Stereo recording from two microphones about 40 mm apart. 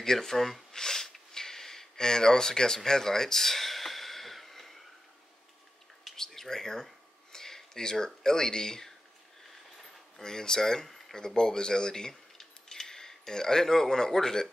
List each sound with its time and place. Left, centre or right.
0.0 s speech: centre
0.7 s a sound: centre
6.1 s a sound: centre
7.3 s speech: centre
10.2 s speech: centre
12.1 s keys jangling: centre